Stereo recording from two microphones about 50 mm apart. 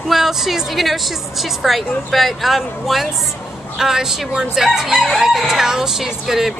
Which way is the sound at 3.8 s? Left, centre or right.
Centre.